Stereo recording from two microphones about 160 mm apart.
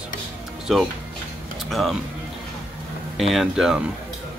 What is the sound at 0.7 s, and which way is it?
Speech, centre (ahead or behind).